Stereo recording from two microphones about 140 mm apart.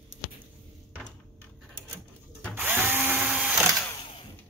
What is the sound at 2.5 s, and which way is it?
Drill, 15° right (ahead or behind).